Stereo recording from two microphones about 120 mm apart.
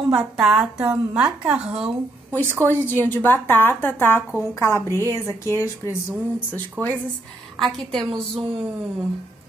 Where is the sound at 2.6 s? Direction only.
15° left (ahead or behind).